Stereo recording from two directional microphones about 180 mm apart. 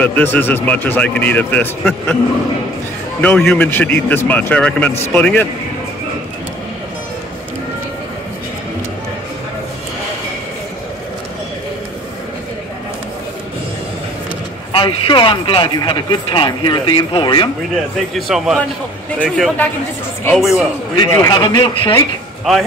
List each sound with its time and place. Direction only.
0.0 s speech: 10° left (ahead or behind)
3.2 s speech: 5° left (ahead or behind)
14.7 s speech: 30° left (ahead or behind)
18.1 s a man's voice: centre (ahead or behind)
21.1 s speech: 20° left (ahead or behind)
22.4 s speech: centre (ahead or behind)